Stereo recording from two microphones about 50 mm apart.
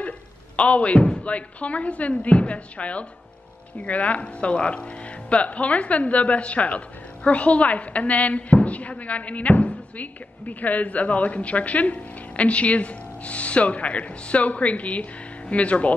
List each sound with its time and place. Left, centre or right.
0.6 s a woman's voice: left